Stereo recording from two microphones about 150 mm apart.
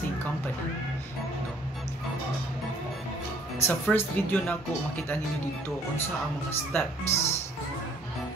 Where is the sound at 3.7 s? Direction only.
10° left (ahead or behind).